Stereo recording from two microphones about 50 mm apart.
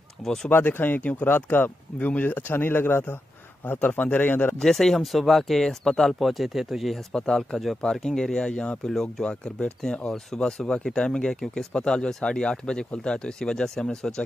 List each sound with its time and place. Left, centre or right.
0.2 s speech: centre
0.5 s speech: left
2.0 s speech: left
4.6 s speech: centre
6.9 s speech: centre